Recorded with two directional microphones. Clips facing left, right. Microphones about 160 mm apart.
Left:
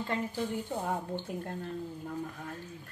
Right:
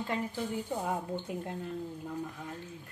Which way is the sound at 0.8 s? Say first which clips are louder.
Even; 5° right (ahead or behind).